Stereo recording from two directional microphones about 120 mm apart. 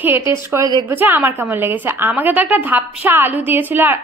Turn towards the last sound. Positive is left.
turn(degrees=-15)  # may be behind; listen again after turning